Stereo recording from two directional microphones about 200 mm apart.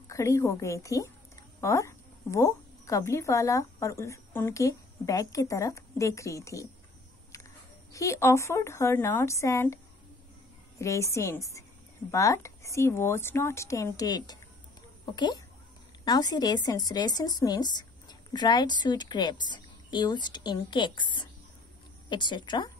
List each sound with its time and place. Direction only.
0.1 s a woman's voice: 15° left (ahead or behind)
7.9 s a woman's voice: 15° left (ahead or behind)
10.8 s a woman's voice: 15° left (ahead or behind)